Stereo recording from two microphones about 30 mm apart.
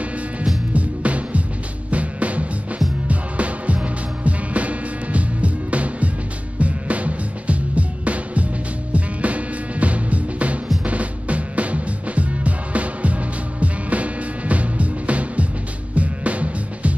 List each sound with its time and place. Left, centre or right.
0.7 s music: right